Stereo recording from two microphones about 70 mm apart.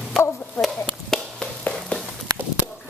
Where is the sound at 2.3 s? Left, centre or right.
Right.